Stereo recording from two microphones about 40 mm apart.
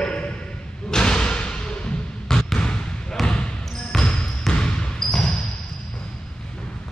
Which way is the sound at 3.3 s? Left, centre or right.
Centre.